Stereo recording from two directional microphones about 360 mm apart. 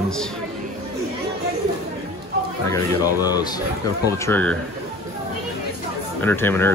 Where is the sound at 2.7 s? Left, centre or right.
Centre.